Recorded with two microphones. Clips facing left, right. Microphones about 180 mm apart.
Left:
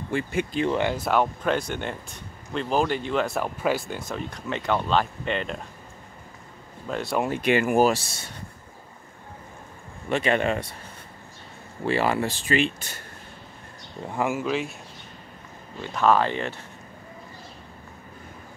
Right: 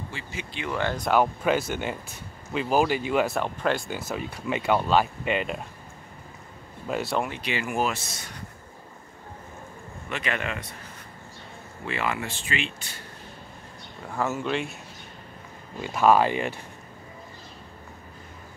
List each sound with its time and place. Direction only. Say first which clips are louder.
0.1 s speech: left 11 dB; 55° left (ahead or behind)
0.7 s speech: left 1 dB; 20° left (ahead or behind)
0.9 s speech: right 1 dB; centre (ahead or behind)
3.3 s speech: left 1 dB; 5° left (ahead or behind)
6.9 s speech: even; 5° right (ahead or behind)
7.2 s speech: left 9 dB; 50° left (ahead or behind)
10.0 s speech: left 8 dB; 30° left (ahead or behind)
11.8 s speech: left 6 dB; 35° left (ahead or behind)
14.0 s speech: left 2 dB; 15° left (ahead or behind)
14.4 s speech: left 2 dB; centre (ahead or behind)
15.8 s speech: right 1 dB; 10° right (ahead or behind)